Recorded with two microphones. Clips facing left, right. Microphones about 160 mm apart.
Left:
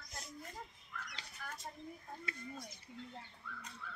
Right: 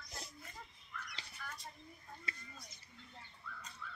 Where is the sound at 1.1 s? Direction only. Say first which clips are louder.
Left 1 dB; 50° left (ahead or behind).